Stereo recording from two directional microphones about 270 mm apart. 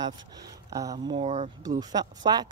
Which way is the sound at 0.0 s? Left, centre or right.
Centre.